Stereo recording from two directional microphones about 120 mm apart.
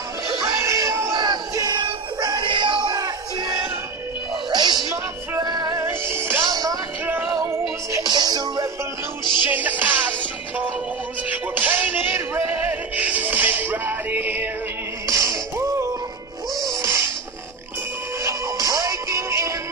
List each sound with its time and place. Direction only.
0.7 s a sound: 25° right (ahead or behind)
1.1 s music: 35° right (ahead or behind)
5.8 s music: 20° right (ahead or behind)
6.4 s music: 30° right (ahead or behind)
8.1 s music: 35° right (ahead or behind)
9.2 s music: 40° left (ahead or behind)
9.5 s music: 15° right (ahead or behind)
11.5 s music: 15° right (ahead or behind)
15.0 s music: 25° right (ahead or behind)
16.6 s a sound: 30° right (ahead or behind)
18.2 s music: 30° right (ahead or behind)